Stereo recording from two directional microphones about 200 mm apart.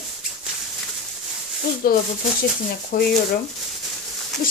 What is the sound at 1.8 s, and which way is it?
A woman's voice, 45° left (ahead or behind).